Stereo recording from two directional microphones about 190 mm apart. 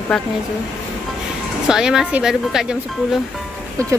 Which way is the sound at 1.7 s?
5° right (ahead or behind).